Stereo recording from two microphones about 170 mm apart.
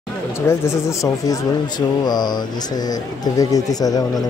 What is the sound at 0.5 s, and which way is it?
Speech, 15° left (ahead or behind).